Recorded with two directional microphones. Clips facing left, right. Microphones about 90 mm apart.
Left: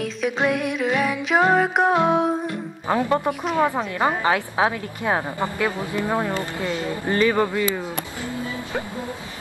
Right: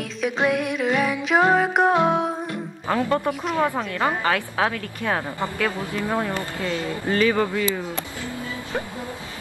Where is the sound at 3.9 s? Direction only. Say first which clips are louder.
Left 2 dB; 20° left (ahead or behind).